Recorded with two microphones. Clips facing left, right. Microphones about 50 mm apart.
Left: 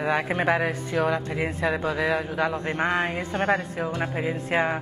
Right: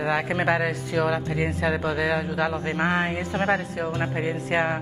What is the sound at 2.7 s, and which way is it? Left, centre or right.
A man's voice, centre.